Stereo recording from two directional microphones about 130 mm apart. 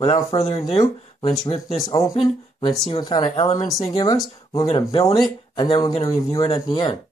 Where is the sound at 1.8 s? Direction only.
25° left (ahead or behind).